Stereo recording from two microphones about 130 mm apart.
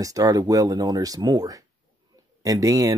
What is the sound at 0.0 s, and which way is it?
Speech, 25° right (ahead or behind).